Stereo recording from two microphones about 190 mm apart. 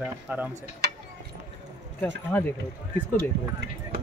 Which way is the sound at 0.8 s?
60° right (ahead or behind).